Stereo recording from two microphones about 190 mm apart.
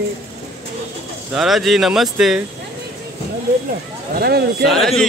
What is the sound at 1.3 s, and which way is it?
Speech, centre (ahead or behind).